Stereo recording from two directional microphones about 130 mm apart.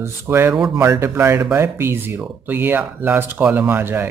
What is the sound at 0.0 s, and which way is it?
Speech, 20° right (ahead or behind).